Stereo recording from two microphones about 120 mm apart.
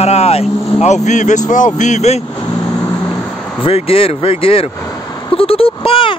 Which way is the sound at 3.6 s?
50° left (ahead or behind).